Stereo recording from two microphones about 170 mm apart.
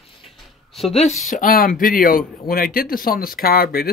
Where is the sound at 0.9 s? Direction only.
40° left (ahead or behind).